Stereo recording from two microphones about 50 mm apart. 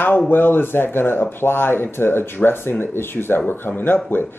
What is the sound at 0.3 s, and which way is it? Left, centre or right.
Speech, left.